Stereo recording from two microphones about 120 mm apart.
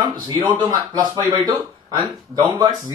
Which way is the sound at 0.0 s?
40° right (ahead or behind).